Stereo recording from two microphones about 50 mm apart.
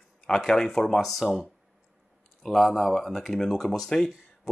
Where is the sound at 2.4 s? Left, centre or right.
Centre.